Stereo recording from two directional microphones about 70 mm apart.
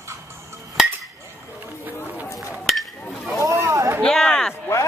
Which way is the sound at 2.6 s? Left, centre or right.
Centre.